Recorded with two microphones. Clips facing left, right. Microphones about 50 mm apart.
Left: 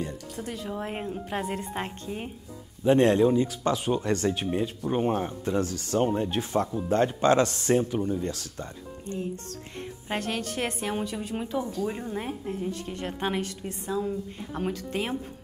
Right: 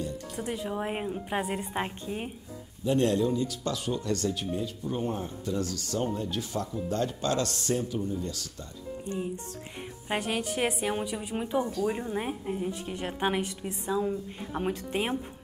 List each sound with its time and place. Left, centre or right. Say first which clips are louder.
0.4 s a woman's voice: right 1 dB; centre
2.8 s speech: left 5 dB; left
9.0 s a woman's voice: left 1 dB; centre
11.4 s speech: right 4 dB; right
11.9 s a woman's voice: right 1 dB; centre
14.7 s speech: right 1 dB; centre